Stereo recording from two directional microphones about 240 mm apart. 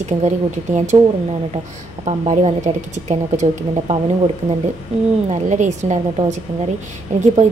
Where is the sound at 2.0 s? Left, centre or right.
Right.